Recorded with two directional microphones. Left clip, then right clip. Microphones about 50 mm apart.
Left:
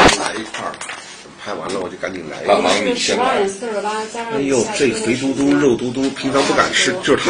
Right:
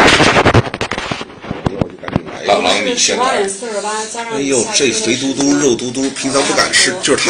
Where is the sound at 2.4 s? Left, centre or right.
Centre.